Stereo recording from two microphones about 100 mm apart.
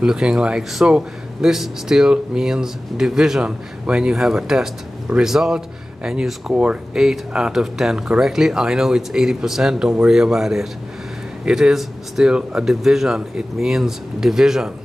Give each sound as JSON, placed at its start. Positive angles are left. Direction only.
{"t": 0.0, "sound": "speech", "side_deg": -5}